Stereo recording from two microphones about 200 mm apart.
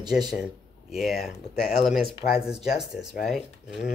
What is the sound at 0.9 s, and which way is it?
Speech, centre (ahead or behind).